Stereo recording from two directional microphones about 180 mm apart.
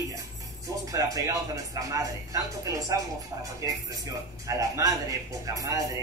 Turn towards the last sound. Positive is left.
turn(degrees=-20)  # may be behind; listen again after turning